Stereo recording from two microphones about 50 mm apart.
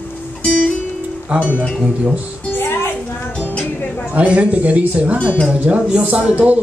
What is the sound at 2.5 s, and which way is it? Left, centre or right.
Music, left.